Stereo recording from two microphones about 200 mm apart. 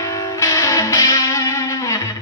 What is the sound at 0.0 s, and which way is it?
Music, 15° left (ahead or behind).